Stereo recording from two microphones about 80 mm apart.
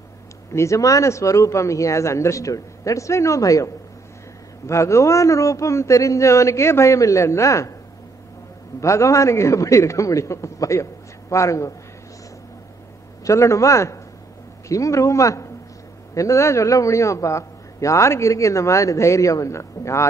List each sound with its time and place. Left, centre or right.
0.5 s a man's voice: left
8.8 s a man's voice: left
13.2 s a man's voice: left